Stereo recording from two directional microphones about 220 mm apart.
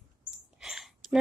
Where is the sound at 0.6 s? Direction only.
Centre (ahead or behind).